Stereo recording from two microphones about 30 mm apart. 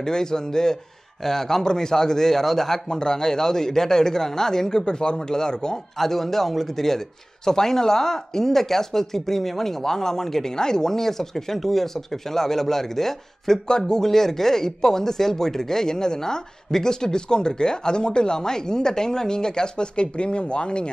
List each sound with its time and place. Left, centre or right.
0.0 s speech: left
2.9 s speech: left
5.9 s speech: centre
13.7 s speech: left
14.1 s speech: centre; by 20.9 s left